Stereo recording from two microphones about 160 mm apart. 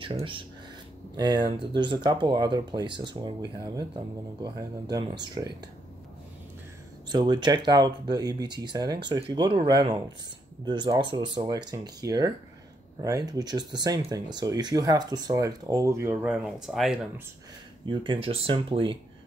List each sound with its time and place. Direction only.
0.0 s speech: 35° right (ahead or behind)
7.1 s speech: 25° right (ahead or behind); by 16.3 s 10° right (ahead or behind)
16.4 s speech: centre (ahead or behind)
17.8 s speech: 30° right (ahead or behind)